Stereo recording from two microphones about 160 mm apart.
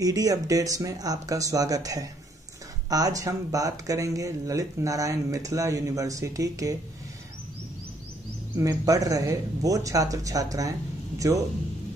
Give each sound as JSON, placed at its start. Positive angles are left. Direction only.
{"t": 0.0, "sound": "speech", "side_deg": -20}
{"t": 8.5, "sound": "speech", "side_deg": -20}